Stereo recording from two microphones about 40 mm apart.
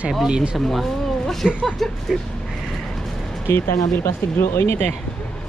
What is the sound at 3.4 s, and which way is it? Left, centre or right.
Speech, left.